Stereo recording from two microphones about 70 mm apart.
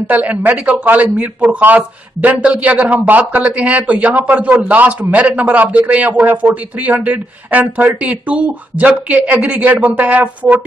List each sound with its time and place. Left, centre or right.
0.1 s speech: right